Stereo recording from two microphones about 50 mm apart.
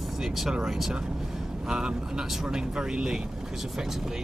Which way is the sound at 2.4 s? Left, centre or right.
Centre.